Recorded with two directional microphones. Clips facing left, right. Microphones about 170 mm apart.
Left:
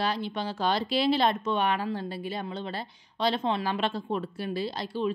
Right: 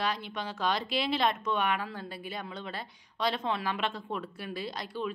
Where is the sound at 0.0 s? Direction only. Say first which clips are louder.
Left 4 dB; 30° left (ahead or behind).